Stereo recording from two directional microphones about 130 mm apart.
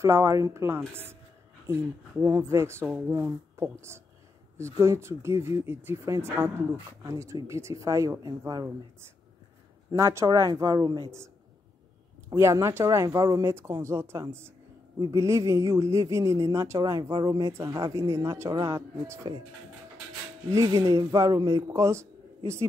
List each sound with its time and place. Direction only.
0.0 s speech: 20° right (ahead or behind)
9.8 s speech: 25° right (ahead or behind)
12.3 s speech: 25° right (ahead or behind)
20.4 s speech: 25° right (ahead or behind)